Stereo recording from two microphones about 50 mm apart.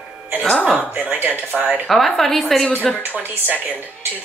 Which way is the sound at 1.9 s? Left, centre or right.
Centre.